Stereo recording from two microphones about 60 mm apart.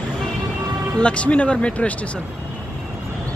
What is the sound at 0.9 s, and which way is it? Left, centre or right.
Speech, centre.